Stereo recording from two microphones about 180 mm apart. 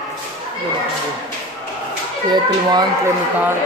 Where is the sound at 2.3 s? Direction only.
20° right (ahead or behind).